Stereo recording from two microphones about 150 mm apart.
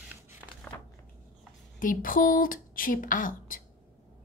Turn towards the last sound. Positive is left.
turn(degrees=65)  # may be behind; listen again after turning